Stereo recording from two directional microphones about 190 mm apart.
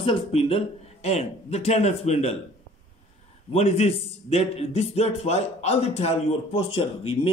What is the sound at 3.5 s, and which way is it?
A man's voice, 30° left (ahead or behind).